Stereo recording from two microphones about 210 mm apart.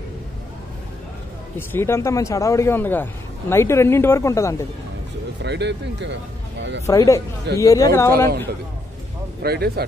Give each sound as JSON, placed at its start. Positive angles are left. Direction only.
{"t": 1.7, "sound": "a man's voice", "side_deg": 10}
{"t": 5.4, "sound": "speech", "side_deg": -55}
{"t": 6.9, "sound": "a man's voice", "side_deg": 15}
{"t": 9.4, "sound": "speech", "side_deg": -50}